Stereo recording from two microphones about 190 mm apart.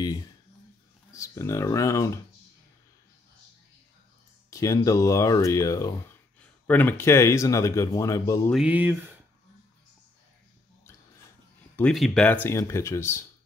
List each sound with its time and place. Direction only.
1.1 s speech: 15° left (ahead or behind)
4.5 s speech: 15° left (ahead or behind)
8.5 s speech: 5° right (ahead or behind)
11.7 s speech: 5° left (ahead or behind)